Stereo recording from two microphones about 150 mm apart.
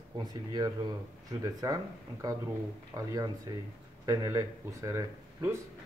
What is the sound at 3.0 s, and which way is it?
Speech, 25° right (ahead or behind).